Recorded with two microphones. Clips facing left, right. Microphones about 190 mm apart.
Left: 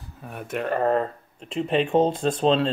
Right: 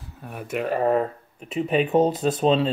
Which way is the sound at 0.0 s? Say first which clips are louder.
Right 1 dB; centre (ahead or behind).